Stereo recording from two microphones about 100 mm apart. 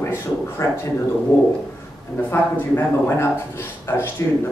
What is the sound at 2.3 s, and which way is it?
A man's voice, 25° left (ahead or behind).